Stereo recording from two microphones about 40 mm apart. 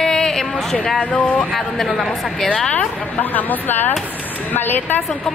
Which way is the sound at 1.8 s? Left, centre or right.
Centre.